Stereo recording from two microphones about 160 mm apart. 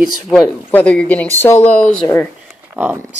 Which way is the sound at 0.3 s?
10° left (ahead or behind).